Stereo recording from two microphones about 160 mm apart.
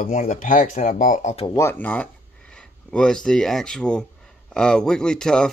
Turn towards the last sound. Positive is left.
turn(degrees=5)  # may be behind; listen again after turning